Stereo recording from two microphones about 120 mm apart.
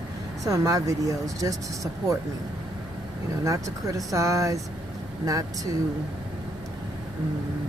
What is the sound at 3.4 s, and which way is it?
Speech, 25° right (ahead or behind).